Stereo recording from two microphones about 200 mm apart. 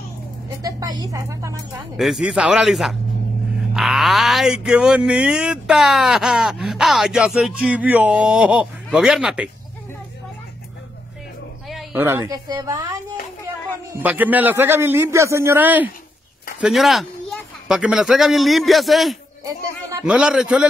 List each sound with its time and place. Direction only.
0.6 s a man's voice: 20° right (ahead or behind)
2.0 s speech: centre (ahead or behind)
11.7 s a woman's voice: 5° right (ahead or behind)
19.4 s music: 20° right (ahead or behind)
20.1 s speech: 5° right (ahead or behind)